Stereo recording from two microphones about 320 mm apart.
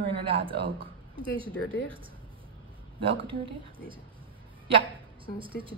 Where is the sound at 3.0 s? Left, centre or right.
Centre.